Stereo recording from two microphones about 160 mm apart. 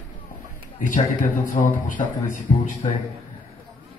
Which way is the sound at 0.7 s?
55° left (ahead or behind).